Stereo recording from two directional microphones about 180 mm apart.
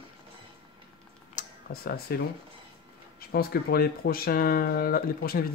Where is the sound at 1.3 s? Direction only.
60° left (ahead or behind).